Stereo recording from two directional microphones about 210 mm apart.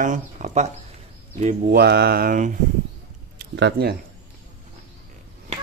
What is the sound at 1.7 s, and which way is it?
Speech, 50° right (ahead or behind).